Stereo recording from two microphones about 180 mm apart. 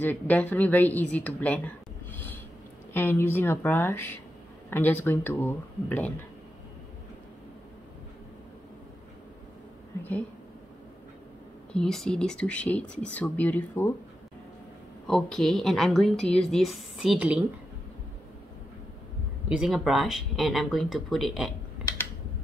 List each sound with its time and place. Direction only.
0.0 s speech: 10° left (ahead or behind)
2.1 s a sound: 10° left (ahead or behind)
2.9 s speech: 10° left (ahead or behind)
11.7 s speech: 5° left (ahead or behind)
15.0 s speech: 5° left (ahead or behind)
19.5 s speech: 5° right (ahead or behind)